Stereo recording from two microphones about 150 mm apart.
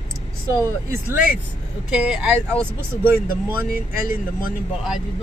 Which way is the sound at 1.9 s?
5° right (ahead or behind).